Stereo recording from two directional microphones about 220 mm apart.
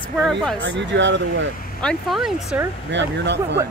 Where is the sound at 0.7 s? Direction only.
55° right (ahead or behind).